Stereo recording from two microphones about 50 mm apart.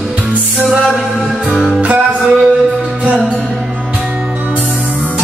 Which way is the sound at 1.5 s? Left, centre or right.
Centre.